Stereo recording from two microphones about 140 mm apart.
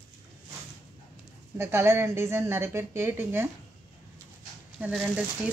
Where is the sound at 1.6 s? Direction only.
20° right (ahead or behind).